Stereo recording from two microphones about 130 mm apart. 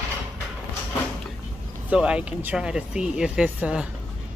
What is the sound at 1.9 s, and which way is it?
Speech, 10° right (ahead or behind).